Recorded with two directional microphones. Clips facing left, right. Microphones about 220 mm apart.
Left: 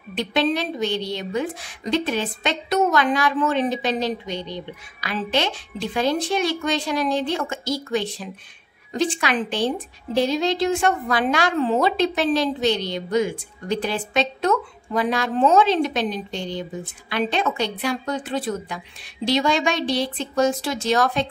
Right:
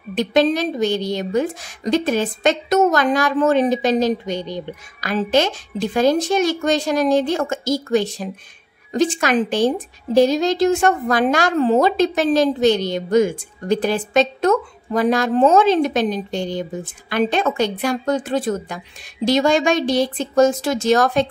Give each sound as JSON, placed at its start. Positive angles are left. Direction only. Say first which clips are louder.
{"t": 0.1, "sound": "a woman's voice", "louder": "right 5 dB", "side_deg": -45}